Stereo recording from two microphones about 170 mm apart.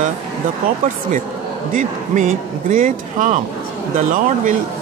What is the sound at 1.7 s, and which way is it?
Speech, 50° right (ahead or behind).